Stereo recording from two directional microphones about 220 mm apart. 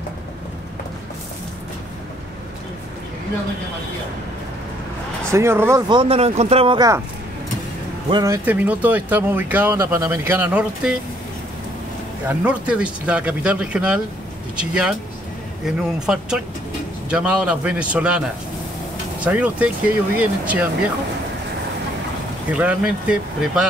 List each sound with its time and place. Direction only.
5.3 s speech: 10° right (ahead or behind)
8.1 s speech: 15° right (ahead or behind)
12.3 s speech: 5° right (ahead or behind)
22.5 s speech: 5° right (ahead or behind)